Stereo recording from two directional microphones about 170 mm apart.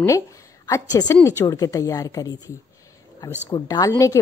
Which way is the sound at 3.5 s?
20° left (ahead or behind).